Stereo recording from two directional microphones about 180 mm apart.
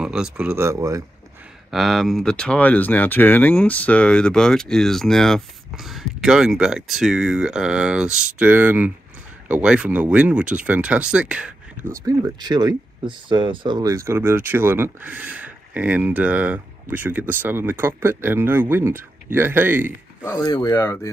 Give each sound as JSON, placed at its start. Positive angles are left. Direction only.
{"t": 0.0, "sound": "speech", "side_deg": -5}
{"t": 1.7, "sound": "speech", "side_deg": 0}
{"t": 11.9, "sound": "speech", "side_deg": -20}
{"t": 20.2, "sound": "speech", "side_deg": 15}